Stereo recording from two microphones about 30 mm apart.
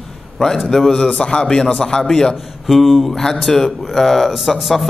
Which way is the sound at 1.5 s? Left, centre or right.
Left.